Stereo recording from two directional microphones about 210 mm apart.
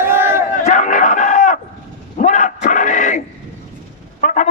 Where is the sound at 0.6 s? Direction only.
35° left (ahead or behind).